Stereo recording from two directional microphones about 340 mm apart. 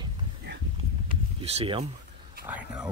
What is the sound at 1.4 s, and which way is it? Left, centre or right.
Speech, centre.